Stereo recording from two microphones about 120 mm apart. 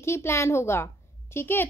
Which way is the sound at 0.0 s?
20° left (ahead or behind).